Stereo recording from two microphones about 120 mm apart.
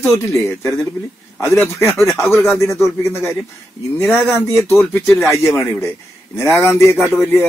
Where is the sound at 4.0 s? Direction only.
20° left (ahead or behind).